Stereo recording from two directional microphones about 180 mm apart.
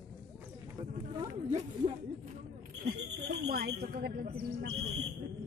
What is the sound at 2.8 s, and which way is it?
Speech, 60° right (ahead or behind).